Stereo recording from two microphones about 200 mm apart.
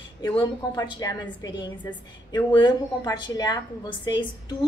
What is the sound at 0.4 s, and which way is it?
A woman's voice, 20° left (ahead or behind).